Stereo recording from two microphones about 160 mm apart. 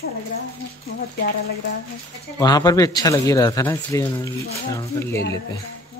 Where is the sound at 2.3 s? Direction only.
25° left (ahead or behind).